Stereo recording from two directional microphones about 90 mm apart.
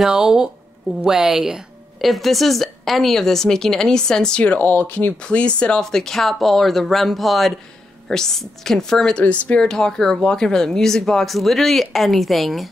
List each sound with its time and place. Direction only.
0.0 s speech: 5° right (ahead or behind)